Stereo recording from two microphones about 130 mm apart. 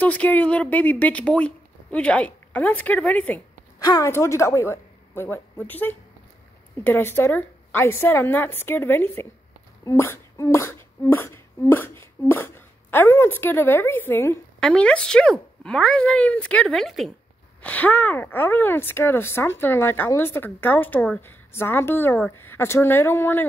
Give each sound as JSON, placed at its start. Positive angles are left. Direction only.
{"t": 0.0, "sound": "speech", "side_deg": 10}
{"t": 3.8, "sound": "a woman's voice", "side_deg": 25}
{"t": 14.6, "sound": "speech", "side_deg": 5}
{"t": 17.6, "sound": "speech", "side_deg": 10}